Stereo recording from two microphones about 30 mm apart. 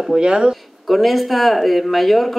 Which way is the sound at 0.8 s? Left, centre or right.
Centre.